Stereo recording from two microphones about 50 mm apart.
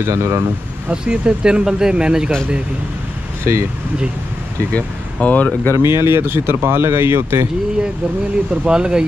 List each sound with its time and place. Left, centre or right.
0.0 s speech: right
1.0 s speech: centre
3.5 s speech: right
4.7 s speech: left
5.8 s speech: right
8.6 s speech: centre